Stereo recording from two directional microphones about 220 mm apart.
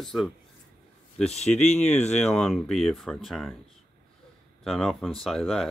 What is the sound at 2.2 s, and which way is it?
Speech, 5° left (ahead or behind).